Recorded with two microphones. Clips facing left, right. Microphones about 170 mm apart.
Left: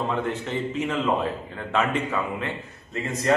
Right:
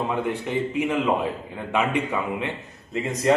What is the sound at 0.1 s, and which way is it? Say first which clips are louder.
A man's voice: right 2 dB; 10° right (ahead or behind).